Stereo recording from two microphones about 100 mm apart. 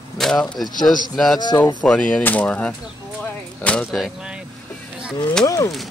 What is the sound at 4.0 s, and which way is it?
Vehicle, 10° right (ahead or behind).